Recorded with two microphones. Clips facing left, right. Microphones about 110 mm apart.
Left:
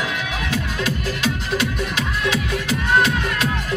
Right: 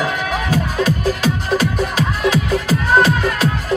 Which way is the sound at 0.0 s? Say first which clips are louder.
Right 6 dB; 40° right (ahead or behind).